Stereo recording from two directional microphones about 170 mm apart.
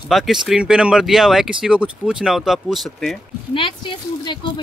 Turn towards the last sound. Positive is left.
turn(degrees=30)  # may be behind; listen again after turning